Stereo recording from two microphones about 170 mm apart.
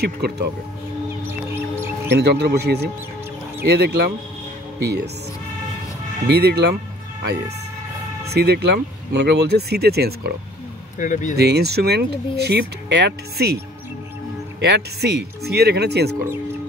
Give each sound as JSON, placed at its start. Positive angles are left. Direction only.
{"t": 0.0, "sound": "speech", "side_deg": -70}
{"t": 2.0, "sound": "speech", "side_deg": -75}
{"t": 6.2, "sound": "speech", "side_deg": -70}
{"t": 8.3, "sound": "speech", "side_deg": -75}
{"t": 11.0, "sound": "speech", "side_deg": 50}
{"t": 11.3, "sound": "speech", "side_deg": -75}
{"t": 14.6, "sound": "speech", "side_deg": -75}